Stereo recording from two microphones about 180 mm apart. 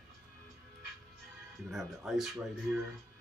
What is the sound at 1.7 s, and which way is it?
Speech, centre (ahead or behind).